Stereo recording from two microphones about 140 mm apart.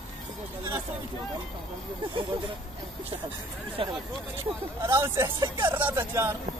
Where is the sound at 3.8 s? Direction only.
40° right (ahead or behind).